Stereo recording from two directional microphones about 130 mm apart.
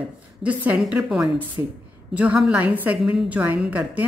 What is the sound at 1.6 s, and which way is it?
Speech, 25° right (ahead or behind).